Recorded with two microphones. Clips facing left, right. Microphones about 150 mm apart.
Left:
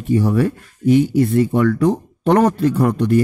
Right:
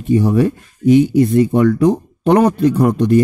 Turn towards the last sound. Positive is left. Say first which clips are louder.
# right 3 dB
turn(degrees=-20)  # may be behind; listen again after turning